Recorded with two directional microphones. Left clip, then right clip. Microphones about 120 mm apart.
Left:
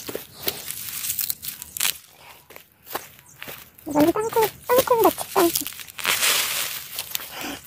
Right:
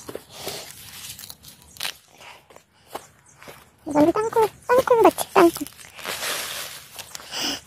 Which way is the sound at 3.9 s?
30° right (ahead or behind).